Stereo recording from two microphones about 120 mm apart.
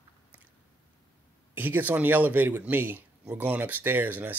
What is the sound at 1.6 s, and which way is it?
Speech, 15° right (ahead or behind).